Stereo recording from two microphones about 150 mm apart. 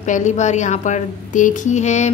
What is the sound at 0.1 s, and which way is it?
A woman's voice, 50° left (ahead or behind).